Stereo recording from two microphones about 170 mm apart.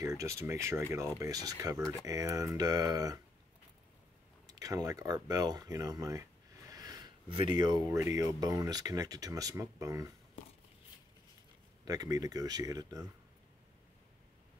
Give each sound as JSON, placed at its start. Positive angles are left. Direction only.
{"t": 0.0, "sound": "speech", "side_deg": -20}
{"t": 4.5, "sound": "speech", "side_deg": -20}
{"t": 11.8, "sound": "speech", "side_deg": -20}